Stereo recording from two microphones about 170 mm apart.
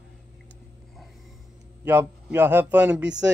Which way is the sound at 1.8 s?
15° right (ahead or behind).